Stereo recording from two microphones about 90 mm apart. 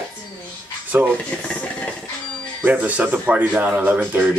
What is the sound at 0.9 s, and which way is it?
Speech, 25° right (ahead or behind).